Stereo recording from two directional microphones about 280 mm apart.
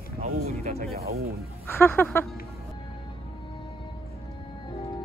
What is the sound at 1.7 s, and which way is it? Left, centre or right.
Speech, centre.